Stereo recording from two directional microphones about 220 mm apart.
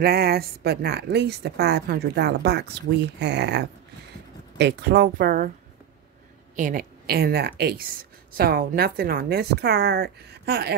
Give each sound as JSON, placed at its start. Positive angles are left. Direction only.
{"t": 0.0, "sound": "a woman's voice", "side_deg": -45}
{"t": 6.5, "sound": "a woman's voice", "side_deg": -40}